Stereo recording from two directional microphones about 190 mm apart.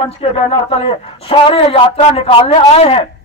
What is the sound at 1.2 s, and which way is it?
A man's voice, 30° left (ahead or behind).